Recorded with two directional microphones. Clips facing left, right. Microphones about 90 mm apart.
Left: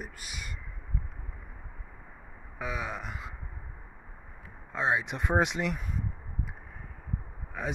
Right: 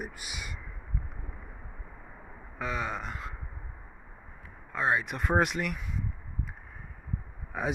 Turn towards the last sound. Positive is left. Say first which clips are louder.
# right 3 dB
turn(degrees=-15)  # may be behind; listen again after turning